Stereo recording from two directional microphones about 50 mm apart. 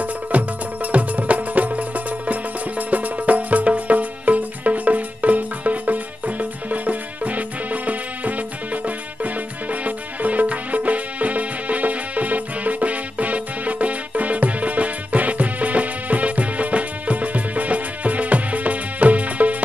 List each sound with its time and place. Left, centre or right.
0.0 s music: right